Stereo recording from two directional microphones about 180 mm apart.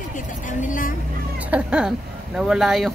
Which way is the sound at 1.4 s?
5° right (ahead or behind).